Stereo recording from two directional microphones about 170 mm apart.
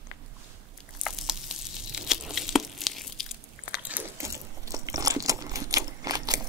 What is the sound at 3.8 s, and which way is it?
Biting, 15° right (ahead or behind).